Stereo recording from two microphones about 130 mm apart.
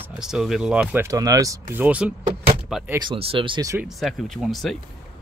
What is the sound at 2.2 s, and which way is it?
Speech, 45° right (ahead or behind).